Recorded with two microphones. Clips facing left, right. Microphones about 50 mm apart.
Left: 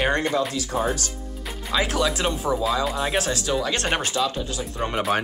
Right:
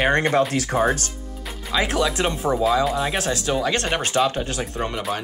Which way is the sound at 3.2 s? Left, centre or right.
Centre.